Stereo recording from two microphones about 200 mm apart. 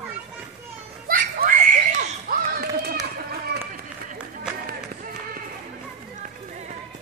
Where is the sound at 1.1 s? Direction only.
45° right (ahead or behind).